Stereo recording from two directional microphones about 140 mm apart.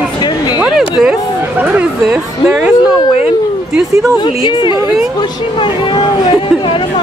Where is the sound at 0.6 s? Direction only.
5° right (ahead or behind).